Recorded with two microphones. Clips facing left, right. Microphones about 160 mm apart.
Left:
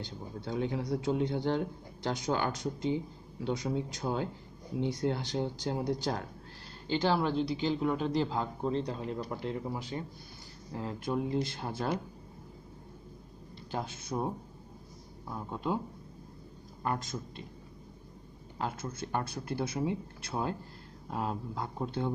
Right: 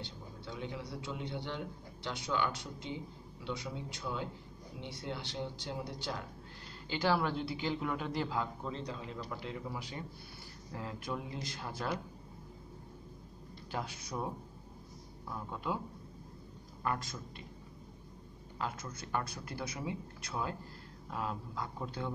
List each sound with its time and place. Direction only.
0.0 s a man's voice: 45° left (ahead or behind)
6.9 s a man's voice: 25° left (ahead or behind)
13.7 s a man's voice: 25° left (ahead or behind)
16.8 s a man's voice: 25° left (ahead or behind)
18.6 s a man's voice: 30° left (ahead or behind)